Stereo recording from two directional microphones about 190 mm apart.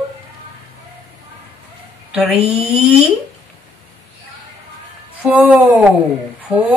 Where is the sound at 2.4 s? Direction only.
35° right (ahead or behind).